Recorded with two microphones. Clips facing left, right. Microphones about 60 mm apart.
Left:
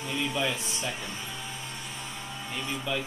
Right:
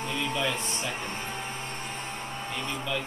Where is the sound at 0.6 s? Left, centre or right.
Right.